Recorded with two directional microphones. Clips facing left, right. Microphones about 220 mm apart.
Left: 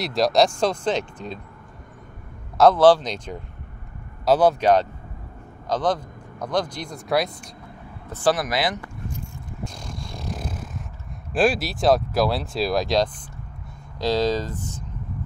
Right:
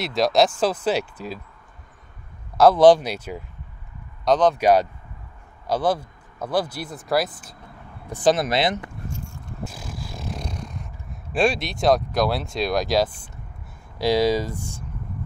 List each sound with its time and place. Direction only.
0.0 s speech: centre (ahead or behind)
2.5 s a man's voice: centre (ahead or behind)
2.8 s speech: 10° right (ahead or behind)
4.2 s speech: 5° left (ahead or behind)
4.6 s speech: 10° right (ahead or behind)
8.1 s speech: 20° right (ahead or behind)
9.7 s a sound: 5° right (ahead or behind)
11.3 s speech: centre (ahead or behind)